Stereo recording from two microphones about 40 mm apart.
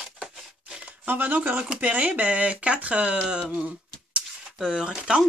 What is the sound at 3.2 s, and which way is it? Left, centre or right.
Speech, centre.